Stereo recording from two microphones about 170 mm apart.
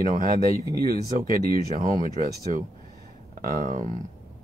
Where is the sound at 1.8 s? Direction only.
55° right (ahead or behind).